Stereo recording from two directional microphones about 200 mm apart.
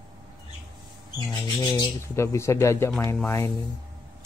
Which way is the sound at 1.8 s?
15° left (ahead or behind).